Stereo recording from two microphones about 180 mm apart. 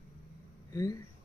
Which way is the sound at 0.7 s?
20° left (ahead or behind).